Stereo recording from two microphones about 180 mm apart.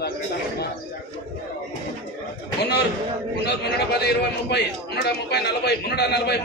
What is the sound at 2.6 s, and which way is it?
A man's voice, 65° left (ahead or behind).